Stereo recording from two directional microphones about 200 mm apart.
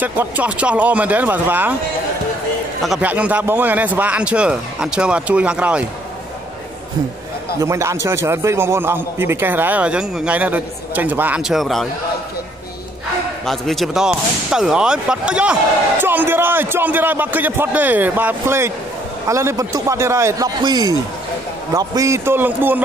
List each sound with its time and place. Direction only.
0.0 s a man's voice: 10° right (ahead or behind)
2.8 s a man's voice: 5° right (ahead or behind)
7.5 s a man's voice: 15° right (ahead or behind); by 11.9 s centre (ahead or behind)
13.5 s a man's voice: centre (ahead or behind)